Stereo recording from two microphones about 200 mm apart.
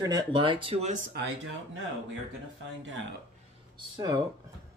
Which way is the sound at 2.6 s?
65° right (ahead or behind).